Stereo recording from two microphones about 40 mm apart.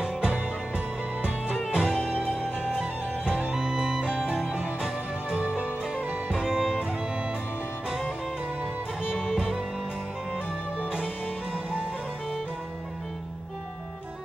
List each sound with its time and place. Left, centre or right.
0.0 s music: right
1.7 s music: centre
5.3 s music: right
9.0 s music: centre